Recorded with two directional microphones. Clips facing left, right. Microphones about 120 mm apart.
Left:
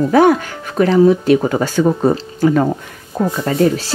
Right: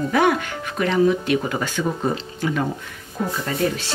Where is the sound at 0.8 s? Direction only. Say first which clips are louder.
Left 8 dB; 35° left (ahead or behind).